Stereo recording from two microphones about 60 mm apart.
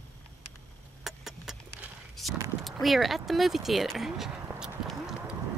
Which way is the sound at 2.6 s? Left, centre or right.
Centre.